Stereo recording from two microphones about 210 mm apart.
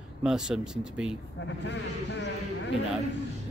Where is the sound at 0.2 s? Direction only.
5° right (ahead or behind).